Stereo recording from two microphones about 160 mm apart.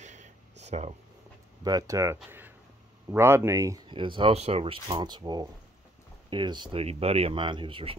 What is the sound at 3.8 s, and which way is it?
Speech, 30° right (ahead or behind).